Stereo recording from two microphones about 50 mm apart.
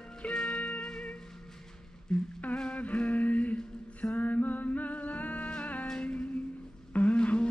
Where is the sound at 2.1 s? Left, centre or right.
Centre.